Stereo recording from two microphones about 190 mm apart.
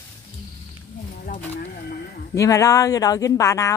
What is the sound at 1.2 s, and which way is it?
Speech, 45° left (ahead or behind).